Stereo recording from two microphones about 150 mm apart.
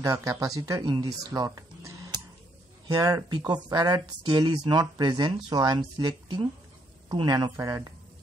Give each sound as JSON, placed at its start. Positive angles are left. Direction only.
{"t": 0.0, "sound": "speech", "side_deg": -20}